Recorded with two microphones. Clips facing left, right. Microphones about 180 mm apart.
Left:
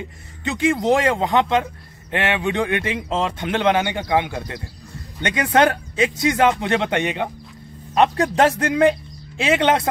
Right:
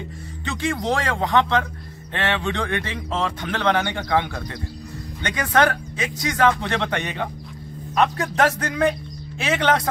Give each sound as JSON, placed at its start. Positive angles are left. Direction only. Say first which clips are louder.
{"t": 0.7, "sound": "speech", "louder": "left 6 dB", "side_deg": 20}